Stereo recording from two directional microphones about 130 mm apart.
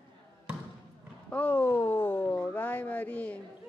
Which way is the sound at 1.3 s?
15° left (ahead or behind).